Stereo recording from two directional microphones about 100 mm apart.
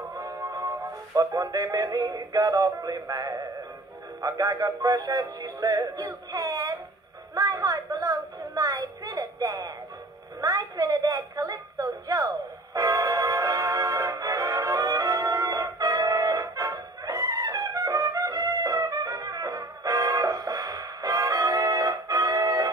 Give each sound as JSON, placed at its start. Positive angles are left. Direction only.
{"t": 0.2, "sound": "music", "side_deg": -35}
{"t": 4.2, "sound": "synthetic singing", "side_deg": -40}
{"t": 7.3, "sound": "a sound", "side_deg": -40}
{"t": 12.7, "sound": "music", "side_deg": -35}